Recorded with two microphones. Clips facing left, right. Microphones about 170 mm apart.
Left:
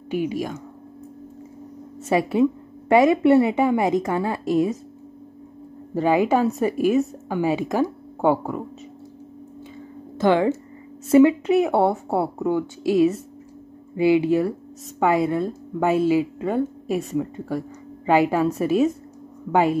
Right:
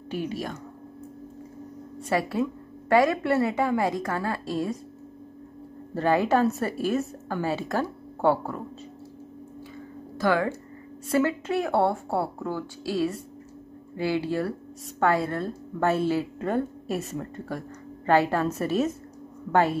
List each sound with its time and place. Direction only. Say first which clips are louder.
0.1 s speech: left 6 dB; 15° left (ahead or behind)
2.0 s speech: left 7 dB; 20° left (ahead or behind)
5.9 s speech: left 3 dB; 15° left (ahead or behind)
10.1 s a woman's voice: left 6 dB; 20° left (ahead or behind)